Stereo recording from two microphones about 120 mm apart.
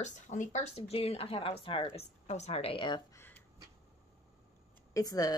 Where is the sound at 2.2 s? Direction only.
70° left (ahead or behind); by 3.0 s 45° left (ahead or behind).